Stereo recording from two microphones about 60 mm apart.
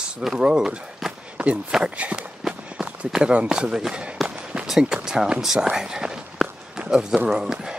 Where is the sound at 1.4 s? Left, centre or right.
Centre.